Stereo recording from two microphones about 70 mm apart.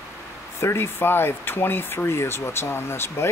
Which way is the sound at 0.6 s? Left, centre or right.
Left.